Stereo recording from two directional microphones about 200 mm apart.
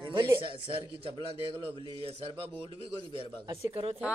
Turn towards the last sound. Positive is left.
turn(degrees=-25)  # may be behind; listen again after turning